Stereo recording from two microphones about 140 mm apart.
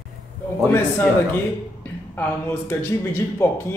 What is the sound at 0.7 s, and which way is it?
A man's voice, 15° left (ahead or behind).